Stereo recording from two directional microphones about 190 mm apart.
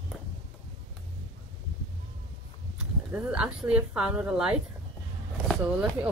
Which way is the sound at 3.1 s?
5° right (ahead or behind).